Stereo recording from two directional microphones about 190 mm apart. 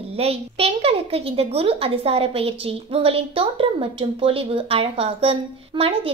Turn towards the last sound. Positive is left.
turn(degrees=-30)  # may be behind; listen again after turning